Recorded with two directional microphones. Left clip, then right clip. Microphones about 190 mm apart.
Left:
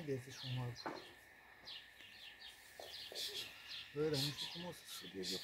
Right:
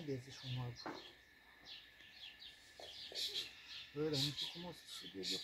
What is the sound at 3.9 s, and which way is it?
Speech, 15° left (ahead or behind).